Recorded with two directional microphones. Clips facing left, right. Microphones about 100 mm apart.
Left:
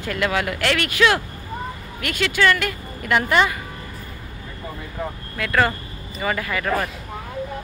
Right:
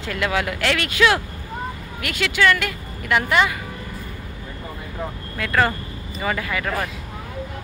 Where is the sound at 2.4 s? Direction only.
30° left (ahead or behind).